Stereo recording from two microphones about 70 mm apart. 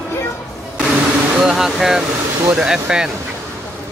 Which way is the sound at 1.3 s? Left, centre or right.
Centre.